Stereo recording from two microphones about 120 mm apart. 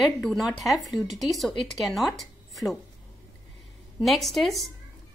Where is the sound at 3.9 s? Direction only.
Centre (ahead or behind).